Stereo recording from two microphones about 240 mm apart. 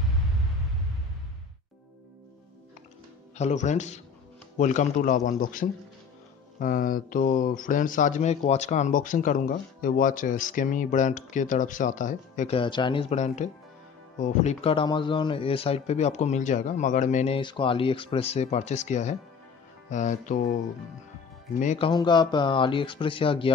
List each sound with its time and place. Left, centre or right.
3.3 s speech: left
21.5 s speech: left